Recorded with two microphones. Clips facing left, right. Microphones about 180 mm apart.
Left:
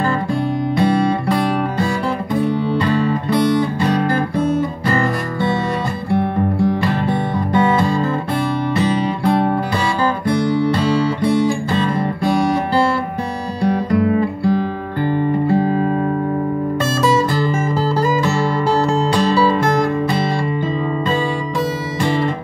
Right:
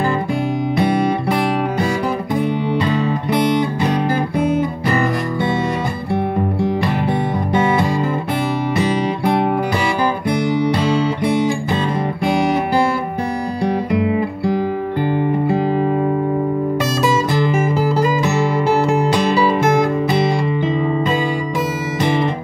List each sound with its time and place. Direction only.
0.7 s music: 20° right (ahead or behind)
6.6 s music: 20° right (ahead or behind)
17.3 s music: 20° right (ahead or behind)
22.0 s music: 20° right (ahead or behind)